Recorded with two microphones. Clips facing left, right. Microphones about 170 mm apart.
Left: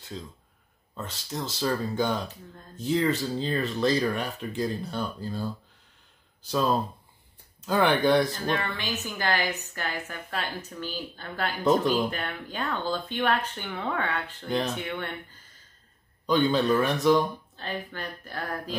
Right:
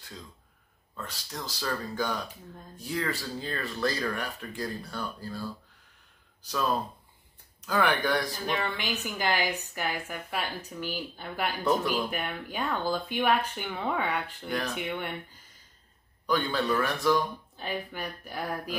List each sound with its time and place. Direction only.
0.9 s speech: 25° left (ahead or behind)
8.5 s a woman's voice: 15° right (ahead or behind)
16.3 s speech: 20° left (ahead or behind)
17.6 s a woman's voice: 10° right (ahead or behind)